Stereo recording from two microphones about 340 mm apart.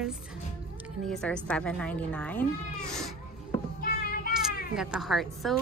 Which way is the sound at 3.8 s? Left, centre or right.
Left.